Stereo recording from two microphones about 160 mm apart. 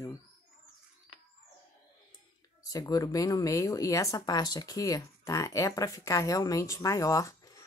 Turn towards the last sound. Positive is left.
turn(degrees=20)  # may be behind; listen again after turning